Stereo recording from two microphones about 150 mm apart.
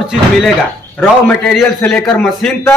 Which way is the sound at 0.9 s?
10° left (ahead or behind).